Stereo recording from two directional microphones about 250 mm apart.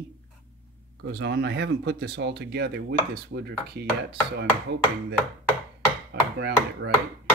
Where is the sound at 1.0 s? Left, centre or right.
Right.